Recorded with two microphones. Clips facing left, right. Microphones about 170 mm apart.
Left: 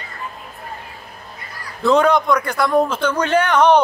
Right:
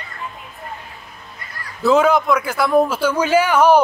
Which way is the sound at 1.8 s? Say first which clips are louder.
Even; 5° right (ahead or behind).